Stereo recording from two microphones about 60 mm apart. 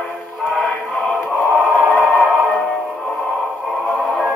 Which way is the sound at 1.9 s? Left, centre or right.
Left.